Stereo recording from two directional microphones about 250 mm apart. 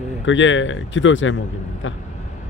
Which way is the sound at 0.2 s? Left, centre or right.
Left.